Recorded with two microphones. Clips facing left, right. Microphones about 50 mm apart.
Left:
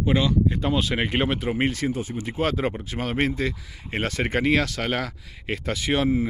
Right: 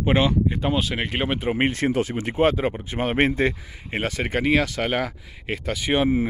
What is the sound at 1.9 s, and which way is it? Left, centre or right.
Speech, right.